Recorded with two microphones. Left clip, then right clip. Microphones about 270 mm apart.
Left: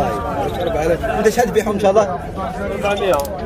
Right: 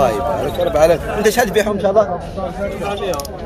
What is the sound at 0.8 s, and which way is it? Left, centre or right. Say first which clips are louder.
Speech: right 3 dB; centre.